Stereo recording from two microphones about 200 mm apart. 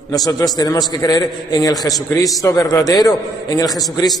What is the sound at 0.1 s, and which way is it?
A man's voice, 20° left (ahead or behind).